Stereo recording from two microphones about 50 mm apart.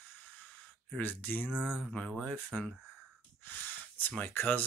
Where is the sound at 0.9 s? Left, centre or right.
Left.